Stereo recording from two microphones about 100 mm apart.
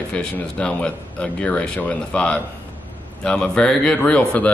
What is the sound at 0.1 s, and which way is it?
Speech, 10° left (ahead or behind).